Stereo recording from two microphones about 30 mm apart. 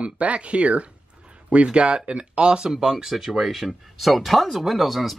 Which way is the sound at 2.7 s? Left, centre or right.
Centre.